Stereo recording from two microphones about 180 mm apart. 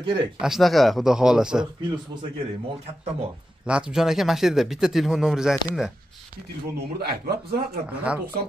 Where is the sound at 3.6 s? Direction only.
5° right (ahead or behind).